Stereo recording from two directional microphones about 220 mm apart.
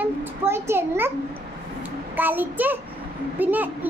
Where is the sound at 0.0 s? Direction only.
10° right (ahead or behind).